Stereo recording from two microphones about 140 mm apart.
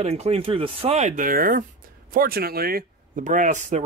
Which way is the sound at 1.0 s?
70° right (ahead or behind).